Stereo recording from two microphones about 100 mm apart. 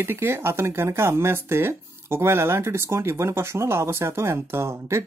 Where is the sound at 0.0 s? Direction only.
25° right (ahead or behind).